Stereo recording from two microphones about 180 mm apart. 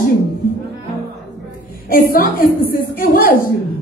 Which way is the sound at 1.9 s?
55° left (ahead or behind).